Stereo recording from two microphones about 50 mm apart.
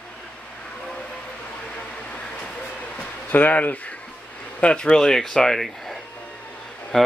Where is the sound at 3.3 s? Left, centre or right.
Left.